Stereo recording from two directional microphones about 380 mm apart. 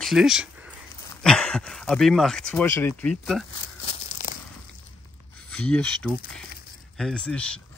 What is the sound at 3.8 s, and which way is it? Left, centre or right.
Tearing, centre.